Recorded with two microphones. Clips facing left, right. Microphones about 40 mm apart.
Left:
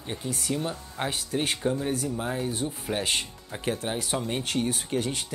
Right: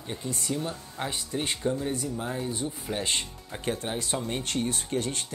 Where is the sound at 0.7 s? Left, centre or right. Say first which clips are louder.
Left 2 dB; left.